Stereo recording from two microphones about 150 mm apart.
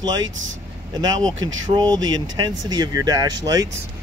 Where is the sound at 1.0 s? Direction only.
25° right (ahead or behind).